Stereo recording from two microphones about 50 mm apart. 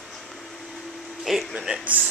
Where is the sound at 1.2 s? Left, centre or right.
Centre.